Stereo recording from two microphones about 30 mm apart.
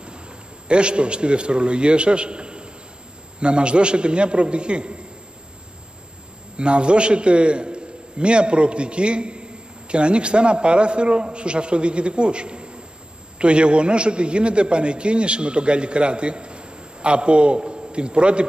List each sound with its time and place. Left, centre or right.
0.7 s a man's voice: right
6.5 s a man's voice: right